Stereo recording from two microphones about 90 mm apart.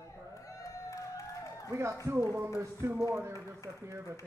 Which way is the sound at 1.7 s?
30° right (ahead or behind).